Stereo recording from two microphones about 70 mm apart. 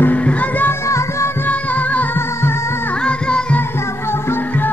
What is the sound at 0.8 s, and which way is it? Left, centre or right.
Music, left.